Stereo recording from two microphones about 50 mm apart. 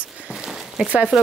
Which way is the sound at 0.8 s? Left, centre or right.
Right.